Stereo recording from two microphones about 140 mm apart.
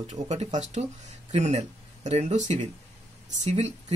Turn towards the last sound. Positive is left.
turn(degrees=-55)  # may be behind; listen again after turning